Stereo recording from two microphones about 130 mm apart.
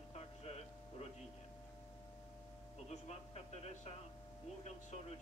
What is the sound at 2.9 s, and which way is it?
Speech, 55° left (ahead or behind).